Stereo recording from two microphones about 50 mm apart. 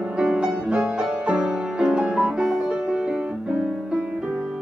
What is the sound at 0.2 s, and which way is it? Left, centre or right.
Music, centre.